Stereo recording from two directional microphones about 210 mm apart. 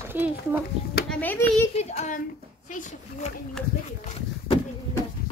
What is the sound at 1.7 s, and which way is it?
Speech, 30° left (ahead or behind).